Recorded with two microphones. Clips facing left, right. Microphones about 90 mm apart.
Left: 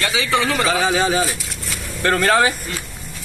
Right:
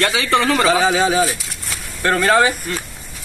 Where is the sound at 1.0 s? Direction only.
20° right (ahead or behind).